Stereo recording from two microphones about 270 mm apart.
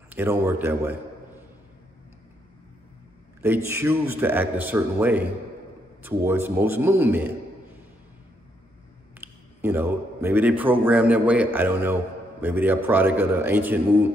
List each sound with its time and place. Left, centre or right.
0.1 s a man's voice: centre
3.4 s a man's voice: centre
9.2 s a man's voice: centre